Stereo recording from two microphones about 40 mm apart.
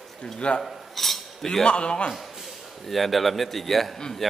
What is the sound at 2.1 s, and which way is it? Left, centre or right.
A man's voice, centre.